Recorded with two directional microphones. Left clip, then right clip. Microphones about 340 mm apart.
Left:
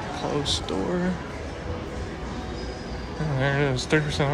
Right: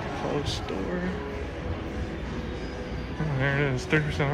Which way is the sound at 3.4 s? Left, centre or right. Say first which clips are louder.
Left 3 dB; centre.